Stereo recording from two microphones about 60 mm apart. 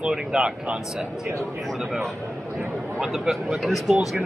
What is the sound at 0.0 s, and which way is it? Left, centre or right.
Speech, centre.